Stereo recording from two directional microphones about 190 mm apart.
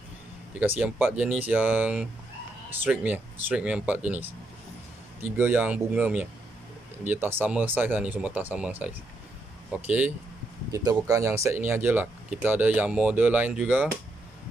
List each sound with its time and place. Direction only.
0.6 s speech: 5° right (ahead or behind)